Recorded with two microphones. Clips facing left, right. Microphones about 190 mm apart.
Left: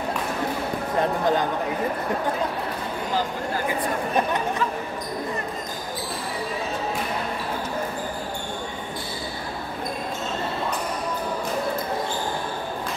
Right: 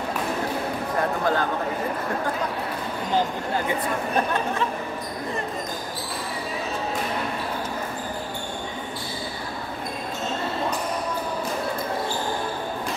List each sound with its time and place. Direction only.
1.2 s a man's voice: 20° left (ahead or behind)